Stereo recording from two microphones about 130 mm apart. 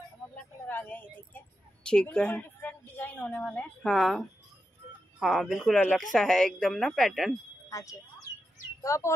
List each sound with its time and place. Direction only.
0.7 s a sound: 15° left (ahead or behind)
3.9 s a woman's voice: centre (ahead or behind)
5.2 s a woman's voice: centre (ahead or behind)
7.7 s speech: 25° left (ahead or behind)